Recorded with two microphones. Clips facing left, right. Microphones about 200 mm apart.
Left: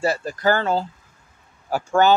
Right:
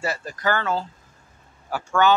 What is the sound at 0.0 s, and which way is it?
Speech, 30° left (ahead or behind).